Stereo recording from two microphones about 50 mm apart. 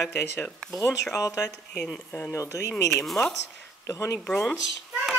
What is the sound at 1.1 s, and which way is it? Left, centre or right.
Speech, left.